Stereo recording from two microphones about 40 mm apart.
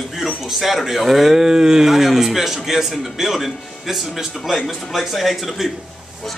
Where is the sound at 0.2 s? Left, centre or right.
Centre.